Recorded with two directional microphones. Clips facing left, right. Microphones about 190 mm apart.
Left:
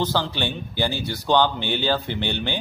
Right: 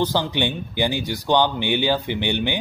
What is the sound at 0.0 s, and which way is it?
Speech, 15° right (ahead or behind).